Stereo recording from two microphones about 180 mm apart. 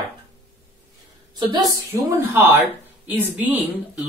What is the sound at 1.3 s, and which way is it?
A woman's voice, 20° right (ahead or behind).